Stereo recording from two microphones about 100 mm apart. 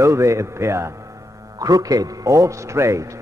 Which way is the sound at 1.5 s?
40° right (ahead or behind).